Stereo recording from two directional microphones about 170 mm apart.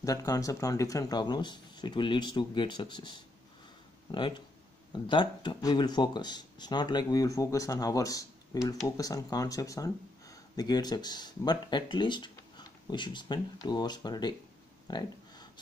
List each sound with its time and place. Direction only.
0.0 s speech: 20° left (ahead or behind)
4.1 s speech: 25° left (ahead or behind)
14.9 s a sound: 25° left (ahead or behind)